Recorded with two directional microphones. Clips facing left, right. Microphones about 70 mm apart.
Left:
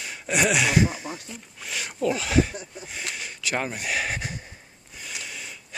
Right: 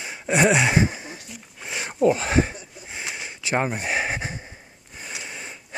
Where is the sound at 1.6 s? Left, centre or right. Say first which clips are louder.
Right 6 dB; right.